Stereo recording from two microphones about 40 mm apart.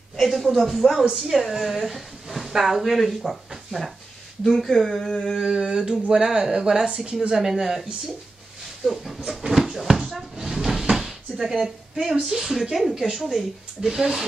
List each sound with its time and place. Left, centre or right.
0.2 s a woman's voice: centre
5.5 s a sound: centre
6.4 s a woman's voice: centre
6.9 s a sound: centre
7.2 s a woman's voice: centre
8.8 s speech: centre
10.5 s drawer open or close: centre
12.9 s a woman's voice: centre